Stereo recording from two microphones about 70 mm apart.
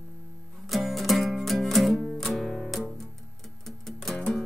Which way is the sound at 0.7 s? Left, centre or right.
Centre.